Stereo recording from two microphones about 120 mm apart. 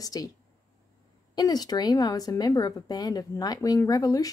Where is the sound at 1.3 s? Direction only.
35° left (ahead or behind).